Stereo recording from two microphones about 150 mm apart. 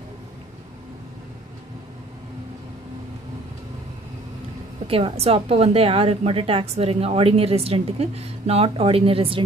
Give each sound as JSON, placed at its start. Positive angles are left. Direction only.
{"t": 4.8, "sound": "a woman's voice", "side_deg": -40}